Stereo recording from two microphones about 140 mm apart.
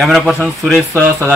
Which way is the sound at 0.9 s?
15° right (ahead or behind).